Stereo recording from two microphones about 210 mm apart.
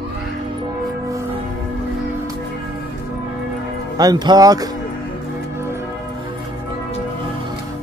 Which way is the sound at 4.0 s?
20° right (ahead or behind).